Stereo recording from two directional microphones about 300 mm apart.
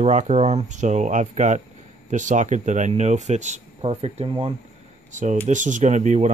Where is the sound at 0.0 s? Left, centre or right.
Right.